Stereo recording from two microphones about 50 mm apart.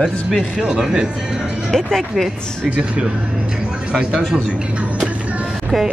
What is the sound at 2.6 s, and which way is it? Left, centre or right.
Speech, right.